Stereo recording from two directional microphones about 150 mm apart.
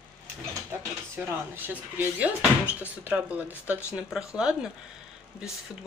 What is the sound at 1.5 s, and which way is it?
Speech, 15° right (ahead or behind).